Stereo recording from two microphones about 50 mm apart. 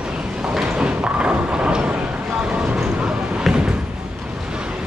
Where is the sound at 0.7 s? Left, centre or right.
Right.